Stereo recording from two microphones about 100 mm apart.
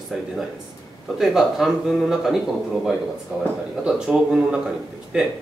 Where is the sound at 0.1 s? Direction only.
Centre (ahead or behind).